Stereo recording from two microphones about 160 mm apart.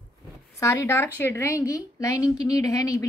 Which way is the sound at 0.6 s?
15° left (ahead or behind).